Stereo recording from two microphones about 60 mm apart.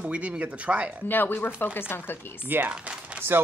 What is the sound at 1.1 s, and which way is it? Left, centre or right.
Speech, left.